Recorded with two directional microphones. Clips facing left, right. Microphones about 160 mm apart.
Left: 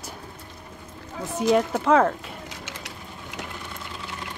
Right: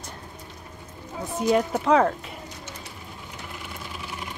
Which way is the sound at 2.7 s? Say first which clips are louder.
Left 1 dB; 90° left.